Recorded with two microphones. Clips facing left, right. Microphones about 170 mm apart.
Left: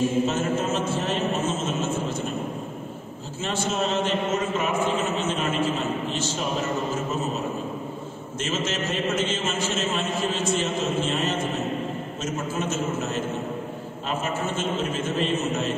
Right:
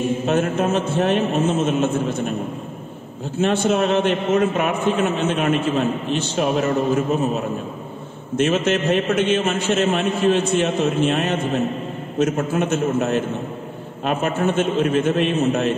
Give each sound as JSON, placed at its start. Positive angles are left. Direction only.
{"t": 0.3, "sound": "a man's voice", "side_deg": -60}
{"t": 3.3, "sound": "a man's voice", "side_deg": -60}